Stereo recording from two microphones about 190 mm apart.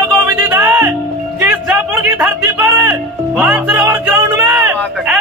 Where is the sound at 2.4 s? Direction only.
10° right (ahead or behind).